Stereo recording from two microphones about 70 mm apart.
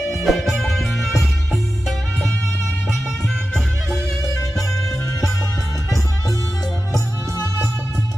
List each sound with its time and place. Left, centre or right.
0.1 s music: centre
6.9 s music: left